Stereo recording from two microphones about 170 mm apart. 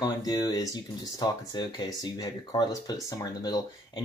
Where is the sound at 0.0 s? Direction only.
20° left (ahead or behind).